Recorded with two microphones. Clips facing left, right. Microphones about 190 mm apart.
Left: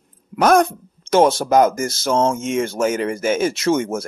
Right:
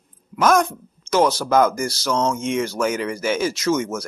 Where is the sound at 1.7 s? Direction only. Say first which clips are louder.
Left 3 dB; 50° left (ahead or behind).